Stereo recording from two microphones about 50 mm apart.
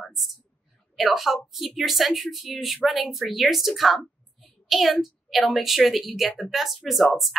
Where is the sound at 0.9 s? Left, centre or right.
Centre.